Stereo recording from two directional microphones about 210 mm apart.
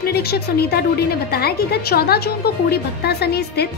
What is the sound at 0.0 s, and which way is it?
A woman's voice, 50° left (ahead or behind).